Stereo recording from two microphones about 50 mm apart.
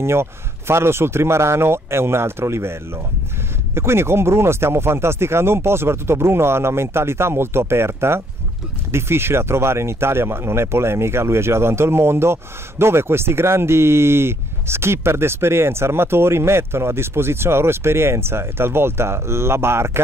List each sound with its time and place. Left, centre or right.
0.0 s speech: right